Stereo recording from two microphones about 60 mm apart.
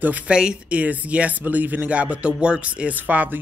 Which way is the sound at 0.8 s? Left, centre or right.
Right.